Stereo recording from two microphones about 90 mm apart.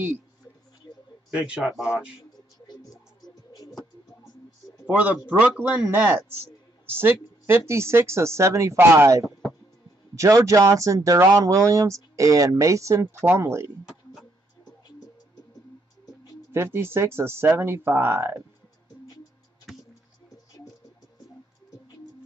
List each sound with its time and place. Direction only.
1.3 s a man's voice: 10° right (ahead or behind)
4.8 s speech: 15° right (ahead or behind)
9.2 s a sound: 5° left (ahead or behind)
10.1 s speech: 35° right (ahead or behind)
13.0 s speech: 25° right (ahead or behind)
16.5 s speech: 30° right (ahead or behind)
19.7 s music: 5° left (ahead or behind)